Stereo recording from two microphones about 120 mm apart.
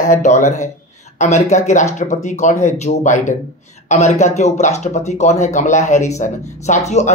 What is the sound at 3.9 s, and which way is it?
Speech, 75° left (ahead or behind).